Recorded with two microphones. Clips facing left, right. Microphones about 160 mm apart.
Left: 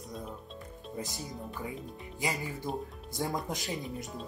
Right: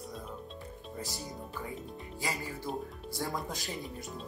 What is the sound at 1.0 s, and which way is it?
Speech, 20° left (ahead or behind).